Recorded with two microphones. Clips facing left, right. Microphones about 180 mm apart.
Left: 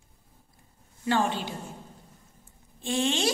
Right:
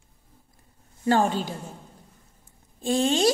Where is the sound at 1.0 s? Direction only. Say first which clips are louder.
Right 4 dB; 40° right (ahead or behind).